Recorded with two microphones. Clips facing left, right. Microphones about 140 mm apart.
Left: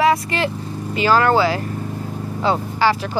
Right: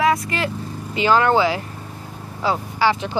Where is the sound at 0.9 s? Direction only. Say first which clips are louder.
Left 1 dB; 20° right (ahead or behind).